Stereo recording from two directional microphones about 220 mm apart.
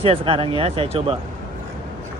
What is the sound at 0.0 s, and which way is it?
Speech, 25° right (ahead or behind).